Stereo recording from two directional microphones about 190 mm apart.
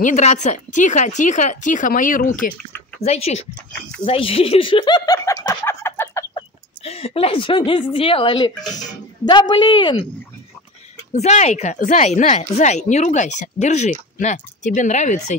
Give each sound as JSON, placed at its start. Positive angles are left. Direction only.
{"t": 0.0, "sound": "speech", "side_deg": 40}
{"t": 3.0, "sound": "speech", "side_deg": 35}
{"t": 6.3, "sound": "speech", "side_deg": 30}
{"t": 11.1, "sound": "speech", "side_deg": 35}